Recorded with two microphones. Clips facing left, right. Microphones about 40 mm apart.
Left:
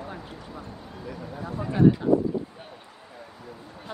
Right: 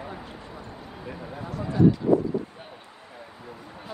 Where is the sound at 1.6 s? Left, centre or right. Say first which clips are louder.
Left 1 dB; left.